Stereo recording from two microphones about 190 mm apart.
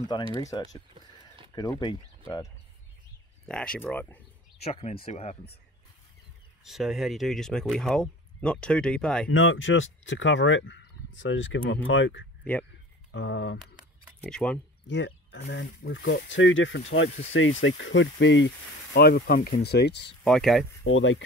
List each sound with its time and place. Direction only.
0.3 s speech: 20° left (ahead or behind)
3.4 s speech: 5° left (ahead or behind)
4.6 s speech: 35° left (ahead or behind)
6.6 s speech: centre (ahead or behind)
9.3 s speech: 90° left
14.3 s speech: 5° left (ahead or behind)
14.9 s speech: 70° left (ahead or behind)
18.9 s speech: 55° left (ahead or behind)
20.2 s speech: centre (ahead or behind)
20.8 s speech: 85° left